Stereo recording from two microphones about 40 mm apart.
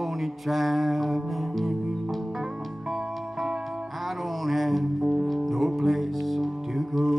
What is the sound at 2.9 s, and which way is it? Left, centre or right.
Music, centre.